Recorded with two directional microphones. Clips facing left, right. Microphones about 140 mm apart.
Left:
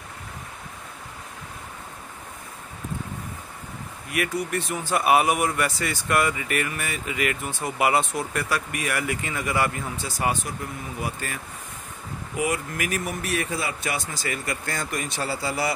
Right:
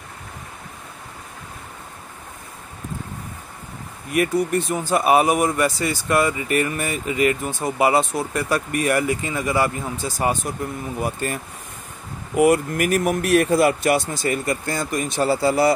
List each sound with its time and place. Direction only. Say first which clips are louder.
4.1 s speech: right 7 dB; 35° right (ahead or behind)
10.0 s speech: right 4 dB; 45° right (ahead or behind)
12.4 s speech: right 10 dB; 55° right (ahead or behind); by 13.3 s 80° right
13.3 s speech: right 13 dB; 55° right (ahead or behind)
14.1 s speech: right 7 dB; 50° right (ahead or behind)
15.1 s speech: right 12 dB; 25° right (ahead or behind)